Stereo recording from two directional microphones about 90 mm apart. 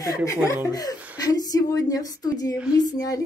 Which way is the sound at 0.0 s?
40° left (ahead or behind).